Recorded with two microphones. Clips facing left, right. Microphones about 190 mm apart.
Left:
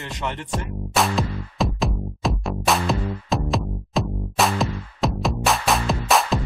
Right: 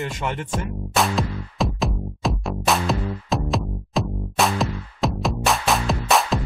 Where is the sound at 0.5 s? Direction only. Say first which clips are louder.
Left 2 dB; centre (ahead or behind).